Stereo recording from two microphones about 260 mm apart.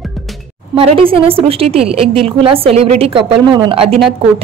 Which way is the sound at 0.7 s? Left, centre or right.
Right.